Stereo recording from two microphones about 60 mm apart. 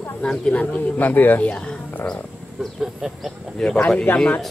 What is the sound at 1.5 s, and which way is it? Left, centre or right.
Speech, centre.